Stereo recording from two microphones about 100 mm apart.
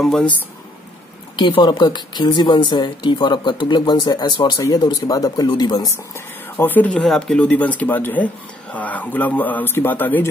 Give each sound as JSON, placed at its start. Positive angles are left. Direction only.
{"t": 0.0, "sound": "speech", "side_deg": 5}
{"t": 1.3, "sound": "a woman's voice", "side_deg": 50}
{"t": 4.6, "sound": "a woman's voice", "side_deg": 40}
{"t": 6.1, "sound": "speech", "side_deg": 20}
{"t": 6.9, "sound": "a man's voice", "side_deg": 5}